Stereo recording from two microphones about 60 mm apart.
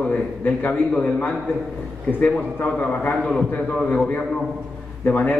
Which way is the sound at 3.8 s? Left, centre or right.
Centre.